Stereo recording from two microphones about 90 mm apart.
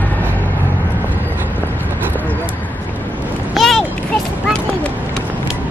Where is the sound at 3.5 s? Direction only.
5° left (ahead or behind).